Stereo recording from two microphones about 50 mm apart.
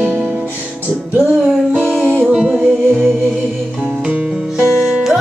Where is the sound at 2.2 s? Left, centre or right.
Centre.